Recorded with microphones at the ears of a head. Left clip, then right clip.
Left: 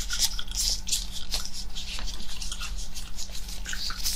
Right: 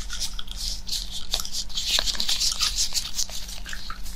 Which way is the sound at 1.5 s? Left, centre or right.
Right.